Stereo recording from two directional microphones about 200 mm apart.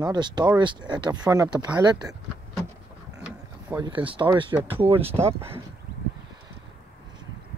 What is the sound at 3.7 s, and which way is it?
Speech, 10° right (ahead or behind).